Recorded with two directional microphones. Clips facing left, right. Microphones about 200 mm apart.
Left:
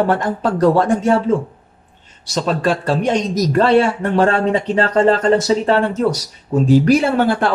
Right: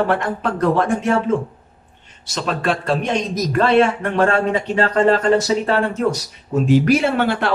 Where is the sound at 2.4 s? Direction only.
35° left (ahead or behind).